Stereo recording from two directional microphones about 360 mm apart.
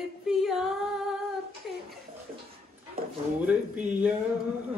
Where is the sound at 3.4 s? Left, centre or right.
Centre.